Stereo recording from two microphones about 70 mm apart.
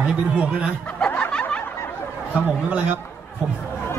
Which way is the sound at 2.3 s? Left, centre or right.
Centre.